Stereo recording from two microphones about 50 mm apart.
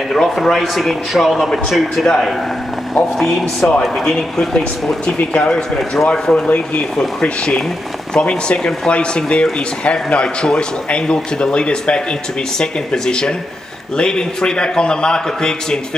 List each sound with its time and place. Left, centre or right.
0.1 s a man's voice: centre
5.3 s a man's voice: left